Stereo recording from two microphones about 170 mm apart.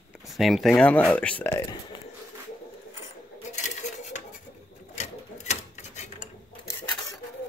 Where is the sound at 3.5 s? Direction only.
45° left (ahead or behind).